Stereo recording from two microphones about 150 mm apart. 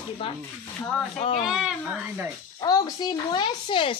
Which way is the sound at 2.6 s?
25° left (ahead or behind).